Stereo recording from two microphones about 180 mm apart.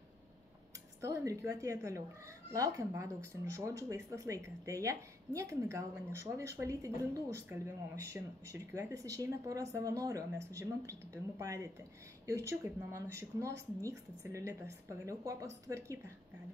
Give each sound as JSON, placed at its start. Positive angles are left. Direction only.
{"t": 1.0, "sound": "a woman's voice", "side_deg": -15}